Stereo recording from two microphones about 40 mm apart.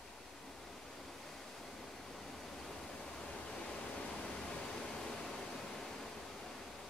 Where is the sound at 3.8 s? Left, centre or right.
Left.